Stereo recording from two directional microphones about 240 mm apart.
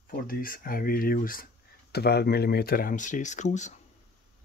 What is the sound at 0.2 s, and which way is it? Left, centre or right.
Speech, left.